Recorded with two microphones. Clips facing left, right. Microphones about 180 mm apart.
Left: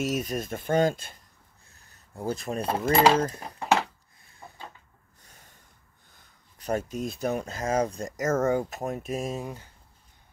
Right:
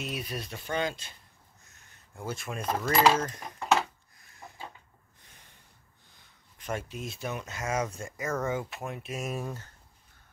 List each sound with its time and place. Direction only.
0.0 s speech: 45° left (ahead or behind)
1.7 s a sound: 35° left (ahead or behind)
2.8 s speech: 30° left (ahead or behind)
5.2 s sniff: 40° left (ahead or behind)
6.6 s speech: 40° left (ahead or behind)
9.2 s speech: 20° left (ahead or behind)